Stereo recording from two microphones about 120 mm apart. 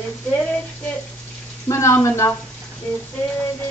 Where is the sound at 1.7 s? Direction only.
25° left (ahead or behind).